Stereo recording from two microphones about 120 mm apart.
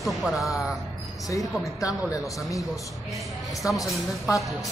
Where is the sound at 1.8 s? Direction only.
30° left (ahead or behind).